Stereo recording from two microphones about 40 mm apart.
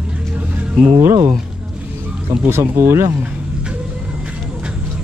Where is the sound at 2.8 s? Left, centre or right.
Right.